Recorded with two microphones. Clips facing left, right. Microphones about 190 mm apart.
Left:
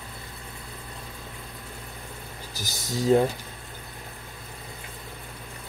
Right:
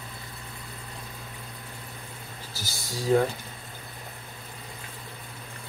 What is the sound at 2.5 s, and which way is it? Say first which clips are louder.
Speech: left 5 dB; 20° left (ahead or behind).